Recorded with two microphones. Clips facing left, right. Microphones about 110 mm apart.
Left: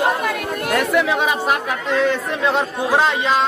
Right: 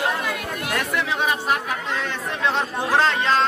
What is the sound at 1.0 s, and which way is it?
Speech, 90° left.